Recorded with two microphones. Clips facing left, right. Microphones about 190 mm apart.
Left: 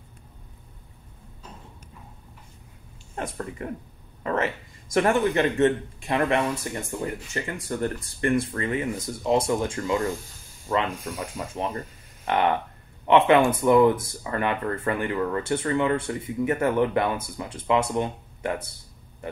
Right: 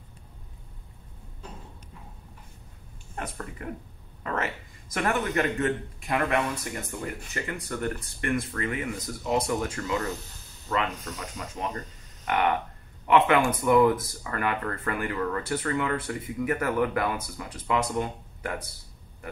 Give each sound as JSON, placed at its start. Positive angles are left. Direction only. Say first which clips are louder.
{"t": 3.2, "sound": "speech", "louder": "left 5 dB", "side_deg": 25}
{"t": 9.9, "sound": "a sound", "louder": "left 4 dB", "side_deg": 10}
{"t": 10.9, "sound": "speech", "louder": "left 5 dB", "side_deg": 10}
{"t": 11.4, "sound": "speech", "louder": "left 2 dB", "side_deg": 25}